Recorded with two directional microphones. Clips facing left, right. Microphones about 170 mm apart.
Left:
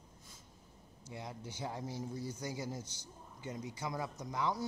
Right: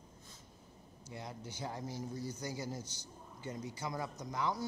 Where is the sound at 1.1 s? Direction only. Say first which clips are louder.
Even; 20° left (ahead or behind).